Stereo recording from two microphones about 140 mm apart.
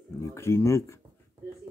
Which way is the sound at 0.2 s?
20° left (ahead or behind).